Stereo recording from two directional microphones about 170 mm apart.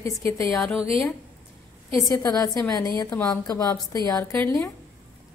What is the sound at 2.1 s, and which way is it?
Speech, 20° left (ahead or behind).